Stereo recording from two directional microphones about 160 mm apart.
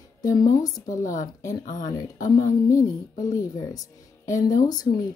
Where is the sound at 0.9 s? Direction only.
55° left (ahead or behind).